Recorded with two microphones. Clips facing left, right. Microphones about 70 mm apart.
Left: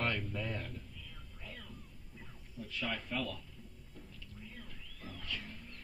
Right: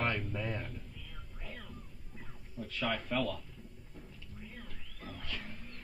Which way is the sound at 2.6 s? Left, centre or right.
Right.